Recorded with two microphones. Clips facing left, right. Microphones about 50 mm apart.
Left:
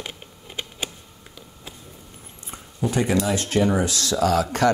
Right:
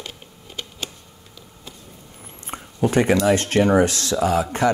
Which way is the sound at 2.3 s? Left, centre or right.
Right.